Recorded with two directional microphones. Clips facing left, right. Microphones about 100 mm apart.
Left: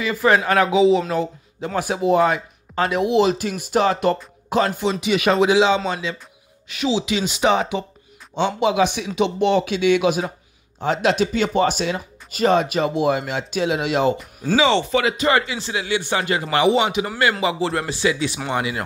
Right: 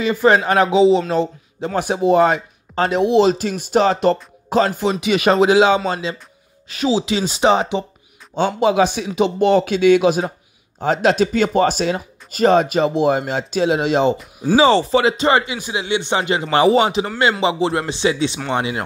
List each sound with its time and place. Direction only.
0.0 s a man's voice: 25° right (ahead or behind); by 5.8 s 45° right (ahead or behind)
5.9 s speech: 35° right (ahead or behind)
14.1 s speech: centre (ahead or behind)
14.6 s speech: 40° right (ahead or behind)
17.2 s speech: 25° right (ahead or behind)